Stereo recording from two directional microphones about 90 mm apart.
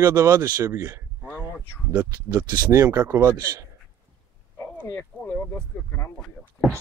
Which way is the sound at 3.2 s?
40° right (ahead or behind).